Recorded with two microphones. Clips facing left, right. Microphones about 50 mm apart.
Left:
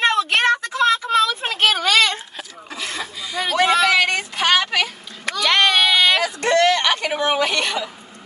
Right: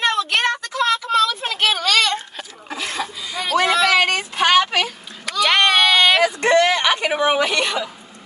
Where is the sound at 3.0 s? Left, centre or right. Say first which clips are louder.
Even; centre.